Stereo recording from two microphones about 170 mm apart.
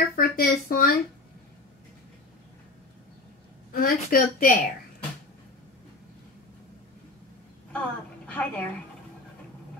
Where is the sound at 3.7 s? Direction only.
60° left (ahead or behind).